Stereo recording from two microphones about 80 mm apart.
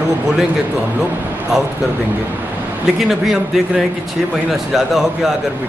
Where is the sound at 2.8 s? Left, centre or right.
Centre.